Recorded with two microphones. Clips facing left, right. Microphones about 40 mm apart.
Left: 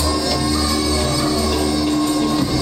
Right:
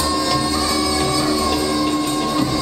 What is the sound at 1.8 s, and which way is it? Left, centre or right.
Music, right.